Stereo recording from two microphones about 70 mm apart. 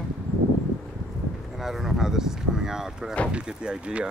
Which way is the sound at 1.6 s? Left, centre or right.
Centre.